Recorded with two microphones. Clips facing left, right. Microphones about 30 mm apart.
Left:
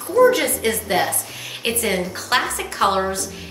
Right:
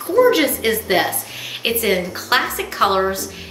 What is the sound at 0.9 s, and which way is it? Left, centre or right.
Speech, right.